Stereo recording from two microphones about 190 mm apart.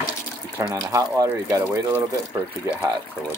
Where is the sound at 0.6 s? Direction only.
15° right (ahead or behind).